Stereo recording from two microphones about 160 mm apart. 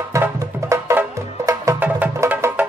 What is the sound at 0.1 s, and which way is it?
Music, 20° right (ahead or behind).